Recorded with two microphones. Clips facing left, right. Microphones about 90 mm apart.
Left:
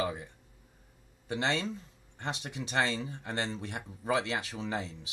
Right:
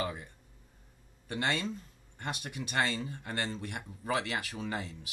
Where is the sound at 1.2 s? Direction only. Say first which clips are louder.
Left 1 dB; 20° left (ahead or behind).